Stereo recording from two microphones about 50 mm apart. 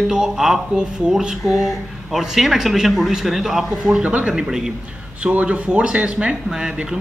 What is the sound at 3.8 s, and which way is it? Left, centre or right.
Speech, right.